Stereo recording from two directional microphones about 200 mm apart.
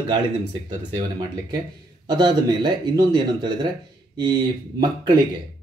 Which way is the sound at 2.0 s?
20° right (ahead or behind).